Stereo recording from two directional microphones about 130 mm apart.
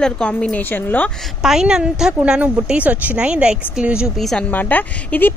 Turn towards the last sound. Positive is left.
turn(degrees=15)  # may be behind; listen again after turning